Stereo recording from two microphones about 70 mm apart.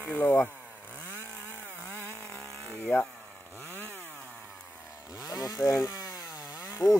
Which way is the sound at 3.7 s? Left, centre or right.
Left.